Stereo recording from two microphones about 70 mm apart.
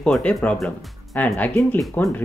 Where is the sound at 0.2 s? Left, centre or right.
Centre.